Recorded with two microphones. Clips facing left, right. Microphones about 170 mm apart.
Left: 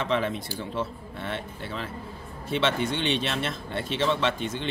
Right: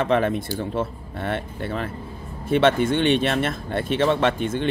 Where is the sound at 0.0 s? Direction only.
50° right (ahead or behind).